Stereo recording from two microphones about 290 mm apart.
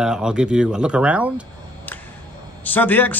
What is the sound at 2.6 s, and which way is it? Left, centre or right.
Speech, centre.